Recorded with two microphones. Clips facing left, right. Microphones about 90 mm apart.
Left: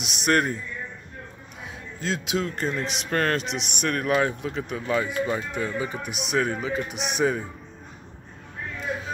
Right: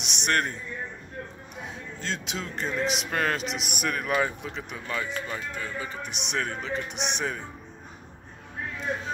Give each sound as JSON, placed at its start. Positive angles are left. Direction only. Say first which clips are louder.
{"t": 0.0, "sound": "speech", "louder": "left 4 dB", "side_deg": 5}
{"t": 1.6, "sound": "a man's voice", "louder": "left 2 dB", "side_deg": 5}
{"t": 4.9, "sound": "speech", "louder": "left 7 dB", "side_deg": 20}
{"t": 6.1, "sound": "a man's voice", "louder": "left 6 dB", "side_deg": 5}